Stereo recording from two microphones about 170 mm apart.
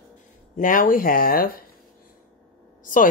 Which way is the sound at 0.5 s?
50° left (ahead or behind).